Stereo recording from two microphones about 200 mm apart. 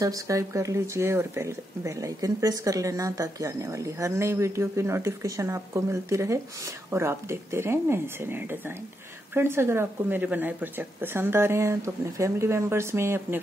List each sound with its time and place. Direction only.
0.0 s speech: 15° right (ahead or behind)